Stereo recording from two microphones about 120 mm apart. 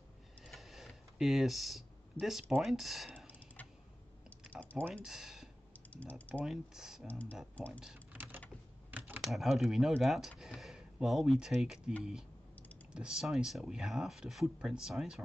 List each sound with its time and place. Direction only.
0.5 s computer keyboard: centre (ahead or behind)
2.6 s speech: centre (ahead or behind)
4.5 s typing: 10° left (ahead or behind)
5.0 s speech: 5° right (ahead or behind)
5.9 s speech: 10° left (ahead or behind)
6.4 s speech: 5° right (ahead or behind)
7.1 s speech: 15° left (ahead or behind)
7.8 s speech: 5° right (ahead or behind)
8.9 s typing: 15° right (ahead or behind)
9.3 s speech: centre (ahead or behind)